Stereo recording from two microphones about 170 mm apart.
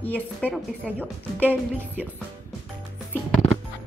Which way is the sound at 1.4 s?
10° right (ahead or behind).